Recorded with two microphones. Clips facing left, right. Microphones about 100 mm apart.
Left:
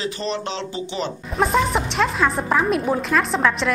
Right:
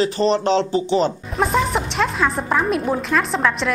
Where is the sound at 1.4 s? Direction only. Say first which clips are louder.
Even; centre (ahead or behind).